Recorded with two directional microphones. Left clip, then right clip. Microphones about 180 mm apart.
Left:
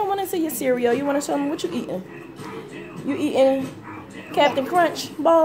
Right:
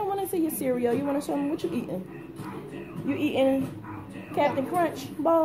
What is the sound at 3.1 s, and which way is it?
A woman's voice, 30° left (ahead or behind).